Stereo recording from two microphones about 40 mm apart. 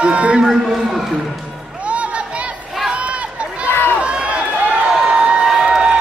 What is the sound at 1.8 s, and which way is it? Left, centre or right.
Music, right.